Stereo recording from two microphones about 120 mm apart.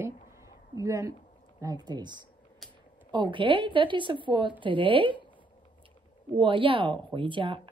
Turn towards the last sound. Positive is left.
turn(degrees=-45)  # may be behind; listen again after turning